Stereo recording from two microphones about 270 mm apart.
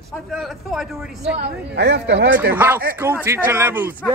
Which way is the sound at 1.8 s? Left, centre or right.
Right.